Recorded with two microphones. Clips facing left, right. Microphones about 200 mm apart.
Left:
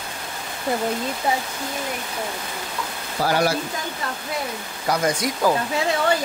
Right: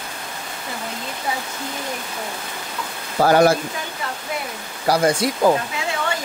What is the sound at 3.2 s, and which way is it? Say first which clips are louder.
Speech: right 7 dB; 50° right (ahead or behind).